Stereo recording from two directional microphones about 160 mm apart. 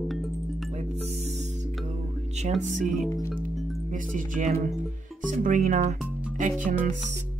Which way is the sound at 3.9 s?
55° right (ahead or behind).